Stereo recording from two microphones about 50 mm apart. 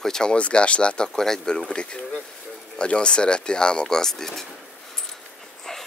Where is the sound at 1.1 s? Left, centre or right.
Centre.